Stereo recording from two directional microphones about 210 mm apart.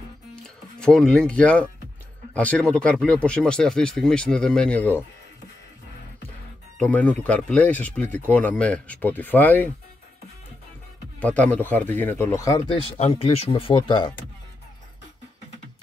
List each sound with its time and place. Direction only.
0.7 s speech: 5° left (ahead or behind)
6.8 s speech: 5° left (ahead or behind)
11.1 s speech: 5° left (ahead or behind)
12.7 s speech: 30° left (ahead or behind)